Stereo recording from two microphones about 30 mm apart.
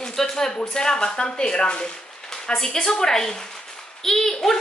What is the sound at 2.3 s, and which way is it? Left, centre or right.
A woman's voice, centre.